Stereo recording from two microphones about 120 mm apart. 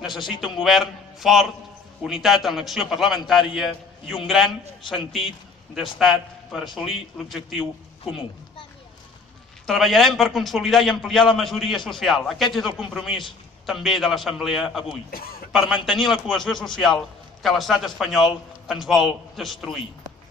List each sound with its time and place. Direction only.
0.4 s a man's voice: centre (ahead or behind)
9.7 s a man's voice: centre (ahead or behind)